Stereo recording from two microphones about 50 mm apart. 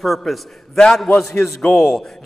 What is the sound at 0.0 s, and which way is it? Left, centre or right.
A man's voice, centre.